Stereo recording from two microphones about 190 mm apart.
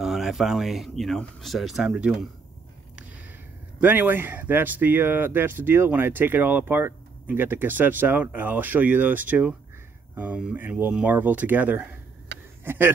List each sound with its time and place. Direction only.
0.0 s speech: centre (ahead or behind)
3.8 s speech: 10° right (ahead or behind)